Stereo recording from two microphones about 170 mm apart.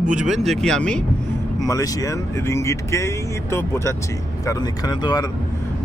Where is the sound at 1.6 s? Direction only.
20° left (ahead or behind).